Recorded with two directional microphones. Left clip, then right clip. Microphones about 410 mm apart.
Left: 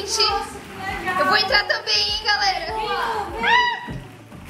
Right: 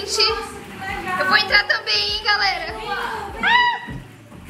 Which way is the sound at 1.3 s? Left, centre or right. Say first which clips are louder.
Right 4 dB; centre.